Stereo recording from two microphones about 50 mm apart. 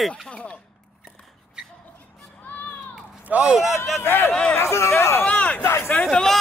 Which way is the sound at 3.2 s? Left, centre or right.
Right.